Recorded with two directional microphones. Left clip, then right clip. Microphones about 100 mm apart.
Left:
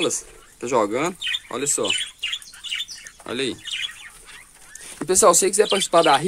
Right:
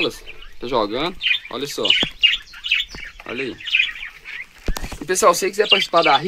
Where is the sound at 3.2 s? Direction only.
20° left (ahead or behind).